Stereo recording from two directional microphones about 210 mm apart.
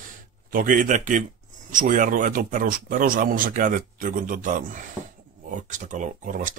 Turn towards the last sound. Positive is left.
turn(degrees=-40)  # may be behind; listen again after turning